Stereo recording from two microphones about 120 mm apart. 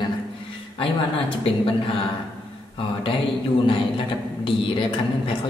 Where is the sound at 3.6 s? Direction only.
45° left (ahead or behind).